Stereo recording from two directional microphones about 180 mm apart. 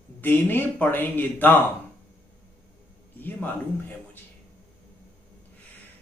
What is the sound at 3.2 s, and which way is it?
Speech, 10° left (ahead or behind).